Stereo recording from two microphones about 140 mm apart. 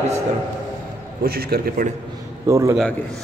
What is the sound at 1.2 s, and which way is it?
Speech, 90° right.